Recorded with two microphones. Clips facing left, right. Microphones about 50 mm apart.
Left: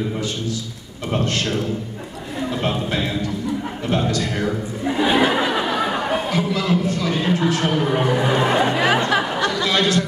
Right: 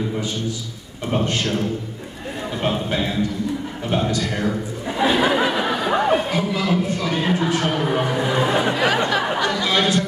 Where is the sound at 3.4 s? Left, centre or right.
Left.